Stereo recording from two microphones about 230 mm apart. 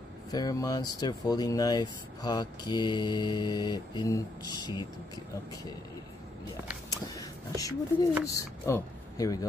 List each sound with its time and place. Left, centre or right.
0.3 s speech: centre
6.9 s a sound: centre
8.3 s speech: centre